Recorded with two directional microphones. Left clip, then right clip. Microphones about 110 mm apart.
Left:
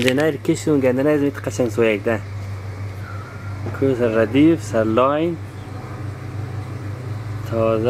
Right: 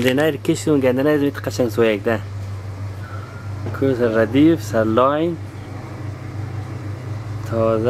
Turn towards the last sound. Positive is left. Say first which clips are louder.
# right 1 dB
turn(degrees=-15)  # may be behind; listen again after turning